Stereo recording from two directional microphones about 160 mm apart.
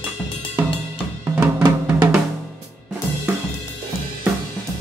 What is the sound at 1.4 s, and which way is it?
Drum, 15° right (ahead or behind).